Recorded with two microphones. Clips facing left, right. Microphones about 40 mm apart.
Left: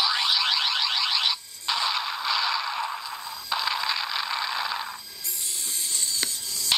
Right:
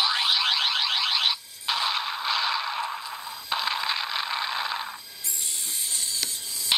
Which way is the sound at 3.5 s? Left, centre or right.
Centre.